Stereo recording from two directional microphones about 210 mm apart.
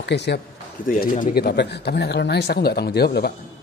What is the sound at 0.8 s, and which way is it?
Speech, 40° left (ahead or behind).